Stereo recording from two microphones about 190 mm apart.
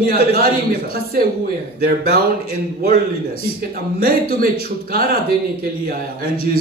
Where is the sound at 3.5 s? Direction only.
50° right (ahead or behind).